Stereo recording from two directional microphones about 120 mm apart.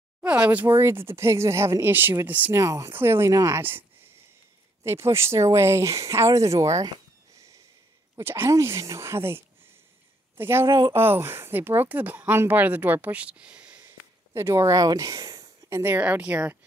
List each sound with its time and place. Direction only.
0.2 s a sound: 10° right (ahead or behind)
0.7 s speech: 25° right (ahead or behind)
2.5 s speech: 25° right (ahead or behind)
4.8 s speech: 20° right (ahead or behind)
8.2 s speech: 20° right (ahead or behind)
15.8 s speech: 15° right (ahead or behind)